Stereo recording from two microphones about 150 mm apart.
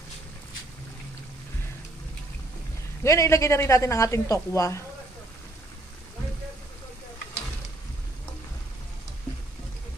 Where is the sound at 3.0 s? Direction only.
20° left (ahead or behind).